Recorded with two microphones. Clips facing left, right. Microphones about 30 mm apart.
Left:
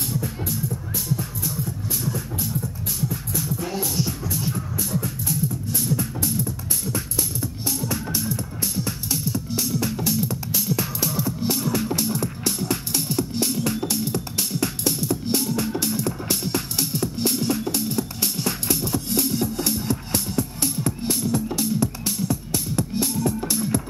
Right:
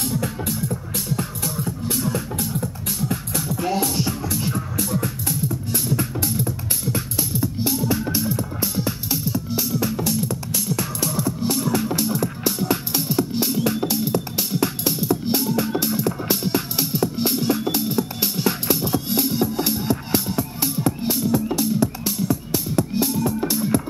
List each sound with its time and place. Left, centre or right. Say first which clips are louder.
0.2 s music: right 3 dB; right
2.0 s music: right 4 dB; right
3.3 s music: right 5 dB; right
4.2 s music: right 3 dB; right
5.9 s music: right 2 dB; right
8.5 s music: right 3 dB; right
9.1 s music: right 1 dB; centre